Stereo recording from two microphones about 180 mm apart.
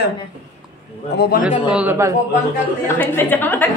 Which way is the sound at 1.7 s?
10° right (ahead or behind).